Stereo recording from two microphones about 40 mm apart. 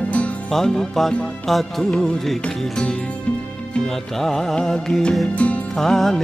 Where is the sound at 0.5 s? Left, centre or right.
Centre.